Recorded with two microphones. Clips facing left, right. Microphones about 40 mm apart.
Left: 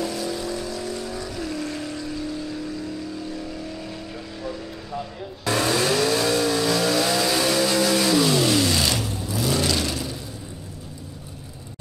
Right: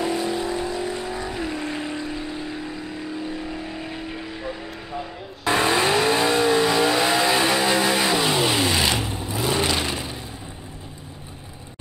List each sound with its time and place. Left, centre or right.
0.0 s vehicle: right